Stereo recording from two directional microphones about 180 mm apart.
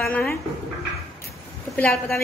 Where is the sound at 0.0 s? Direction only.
Centre (ahead or behind).